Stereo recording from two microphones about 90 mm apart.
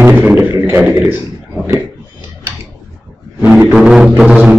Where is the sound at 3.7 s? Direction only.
5° right (ahead or behind).